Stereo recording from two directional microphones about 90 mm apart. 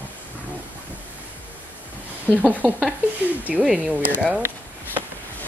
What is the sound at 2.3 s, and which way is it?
Speech, 20° right (ahead or behind).